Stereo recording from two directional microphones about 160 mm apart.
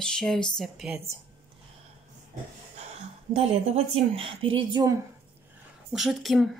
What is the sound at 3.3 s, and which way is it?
Speech, 25° right (ahead or behind).